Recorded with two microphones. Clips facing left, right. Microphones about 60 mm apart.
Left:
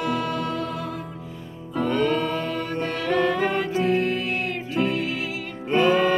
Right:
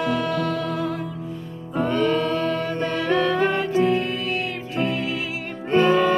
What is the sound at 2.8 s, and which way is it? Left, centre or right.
Music, right.